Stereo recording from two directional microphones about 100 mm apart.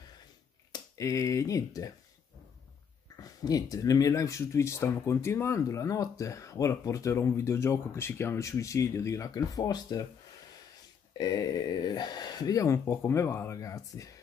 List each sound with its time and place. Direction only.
0.7 s speech: 35° left (ahead or behind)
3.2 s speech: 35° left (ahead or behind)
11.1 s speech: 40° left (ahead or behind)